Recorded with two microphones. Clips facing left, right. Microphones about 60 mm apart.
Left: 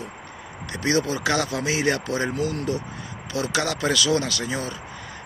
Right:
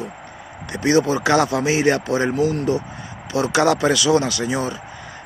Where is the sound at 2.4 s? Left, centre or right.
Centre.